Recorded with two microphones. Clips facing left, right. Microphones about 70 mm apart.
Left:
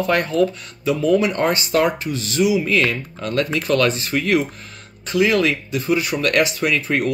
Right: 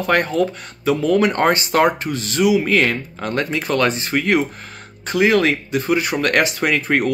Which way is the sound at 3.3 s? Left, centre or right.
Right.